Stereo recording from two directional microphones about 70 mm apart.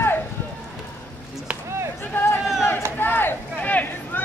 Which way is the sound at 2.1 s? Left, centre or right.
Left.